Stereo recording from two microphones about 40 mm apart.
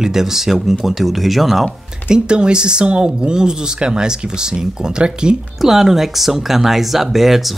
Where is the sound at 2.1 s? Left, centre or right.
Right.